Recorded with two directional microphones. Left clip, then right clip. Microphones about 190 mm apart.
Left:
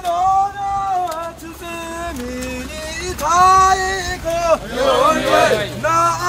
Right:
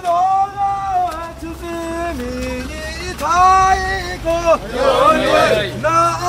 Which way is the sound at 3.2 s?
55° left (ahead or behind).